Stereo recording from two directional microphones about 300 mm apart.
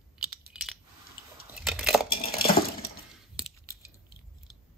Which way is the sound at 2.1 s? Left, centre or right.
Left.